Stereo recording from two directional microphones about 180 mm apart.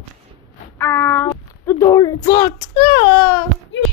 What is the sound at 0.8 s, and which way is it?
Speech, 10° left (ahead or behind).